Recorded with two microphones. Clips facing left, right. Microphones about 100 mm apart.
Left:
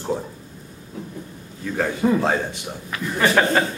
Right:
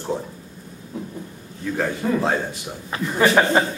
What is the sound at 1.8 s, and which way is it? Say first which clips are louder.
Speech: left 3 dB; centre (ahead or behind).